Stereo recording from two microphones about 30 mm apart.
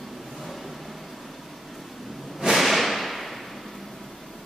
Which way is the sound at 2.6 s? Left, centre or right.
Centre.